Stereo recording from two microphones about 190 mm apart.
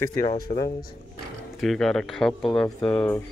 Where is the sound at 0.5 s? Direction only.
40° left (ahead or behind).